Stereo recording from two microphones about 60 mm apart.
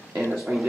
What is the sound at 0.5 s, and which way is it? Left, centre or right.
Speech, centre.